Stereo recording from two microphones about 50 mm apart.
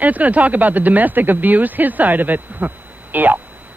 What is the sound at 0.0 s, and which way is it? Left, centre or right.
Speech, right.